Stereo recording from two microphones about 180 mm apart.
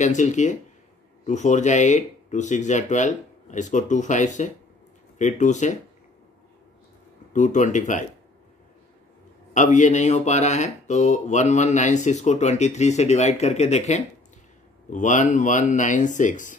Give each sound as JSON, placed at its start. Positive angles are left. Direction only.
{"t": 0.0, "sound": "speech", "side_deg": 40}
{"t": 7.3, "sound": "speech", "side_deg": 45}
{"t": 9.5, "sound": "speech", "side_deg": 45}